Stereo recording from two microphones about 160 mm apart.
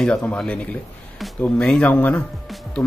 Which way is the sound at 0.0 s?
10° left (ahead or behind).